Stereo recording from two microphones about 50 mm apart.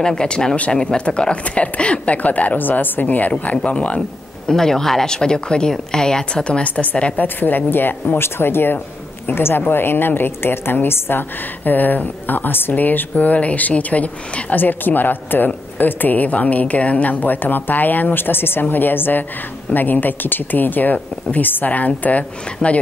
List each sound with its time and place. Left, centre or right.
0.0 s speech: centre
4.5 s speech: centre; by 7.2 s left
7.2 s a woman's voice: left